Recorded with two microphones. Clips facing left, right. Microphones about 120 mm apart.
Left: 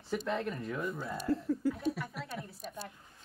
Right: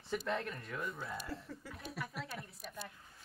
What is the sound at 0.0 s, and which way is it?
Speech, centre (ahead or behind).